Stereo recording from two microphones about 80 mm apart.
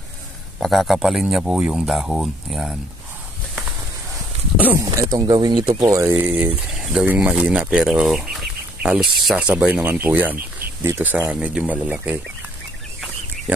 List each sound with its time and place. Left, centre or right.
0.6 s speech: centre
4.8 s speech: right
5.8 s speech: right
6.0 s speech: right
6.7 s speech: centre
7.2 s speech: centre